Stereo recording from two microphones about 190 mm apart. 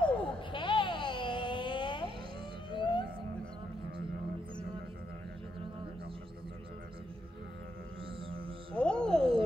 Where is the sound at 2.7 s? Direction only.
25° left (ahead or behind).